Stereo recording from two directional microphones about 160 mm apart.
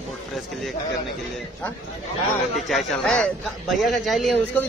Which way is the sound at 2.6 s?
Centre (ahead or behind).